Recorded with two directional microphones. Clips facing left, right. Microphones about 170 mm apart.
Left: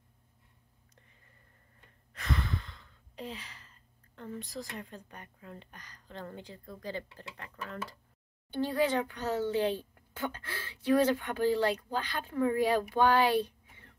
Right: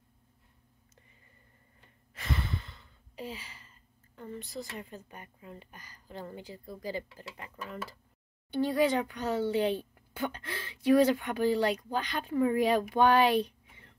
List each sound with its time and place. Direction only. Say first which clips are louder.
2.1 s sigh: left 1 dB; centre (ahead or behind)
8.5 s speech: right 2 dB; 15° right (ahead or behind)